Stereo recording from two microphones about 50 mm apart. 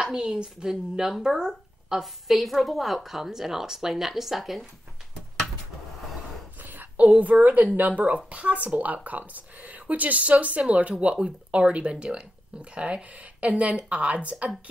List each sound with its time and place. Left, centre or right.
0.0 s speech: centre
6.6 s a sound: right
7.1 s speech: right